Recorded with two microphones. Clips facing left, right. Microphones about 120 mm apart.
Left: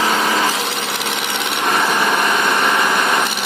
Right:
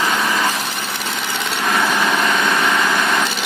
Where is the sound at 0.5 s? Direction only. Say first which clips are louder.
Left 2 dB; 85° left.